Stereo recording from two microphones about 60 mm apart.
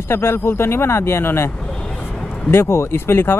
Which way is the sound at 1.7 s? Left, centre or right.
Centre.